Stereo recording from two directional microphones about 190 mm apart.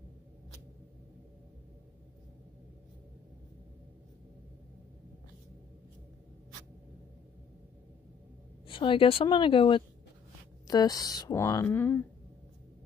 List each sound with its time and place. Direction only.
8.6 s a woman's voice: 25° left (ahead or behind); by 12.0 s 10° left (ahead or behind)